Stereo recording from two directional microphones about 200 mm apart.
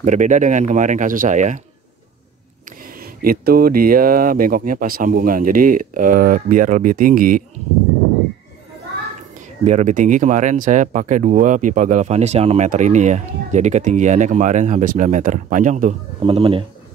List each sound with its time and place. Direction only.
0.0 s speech: 35° right (ahead or behind)
3.0 s speech: 50° right (ahead or behind)
9.7 s speech: 35° right (ahead or behind)